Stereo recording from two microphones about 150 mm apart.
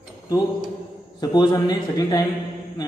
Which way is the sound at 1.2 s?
25° left (ahead or behind).